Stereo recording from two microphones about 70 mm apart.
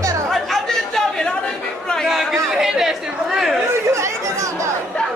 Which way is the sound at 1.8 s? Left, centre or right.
Centre.